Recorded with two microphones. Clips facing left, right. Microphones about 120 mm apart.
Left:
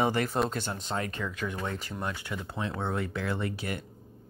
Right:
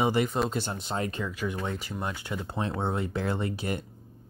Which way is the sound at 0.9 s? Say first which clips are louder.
Right 3 dB; 25° right (ahead or behind).